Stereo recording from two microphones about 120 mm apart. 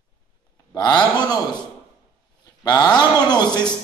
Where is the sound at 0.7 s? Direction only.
35° left (ahead or behind).